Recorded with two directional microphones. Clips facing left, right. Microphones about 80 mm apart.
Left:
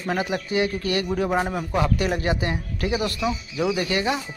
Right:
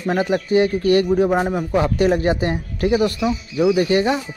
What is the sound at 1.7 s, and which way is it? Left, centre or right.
Speech, right.